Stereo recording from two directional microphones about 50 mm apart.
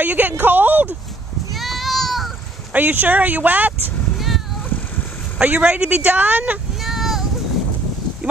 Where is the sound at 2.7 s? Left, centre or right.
Right.